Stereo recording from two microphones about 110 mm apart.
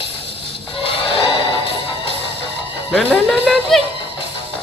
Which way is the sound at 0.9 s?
55° left (ahead or behind).